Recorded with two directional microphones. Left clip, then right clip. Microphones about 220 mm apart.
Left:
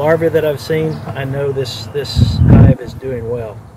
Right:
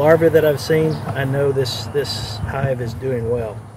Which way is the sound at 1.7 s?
30° right (ahead or behind).